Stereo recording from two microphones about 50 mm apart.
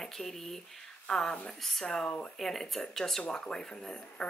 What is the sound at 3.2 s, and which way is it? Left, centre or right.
Speech, centre.